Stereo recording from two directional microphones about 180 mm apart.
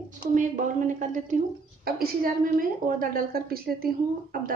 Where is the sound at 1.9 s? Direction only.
55° right (ahead or behind).